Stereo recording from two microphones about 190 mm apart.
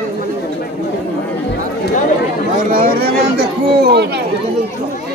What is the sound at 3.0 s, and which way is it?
Speech, 60° right (ahead or behind).